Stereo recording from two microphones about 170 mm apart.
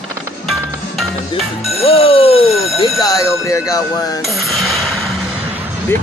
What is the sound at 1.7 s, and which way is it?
Speech, 35° left (ahead or behind).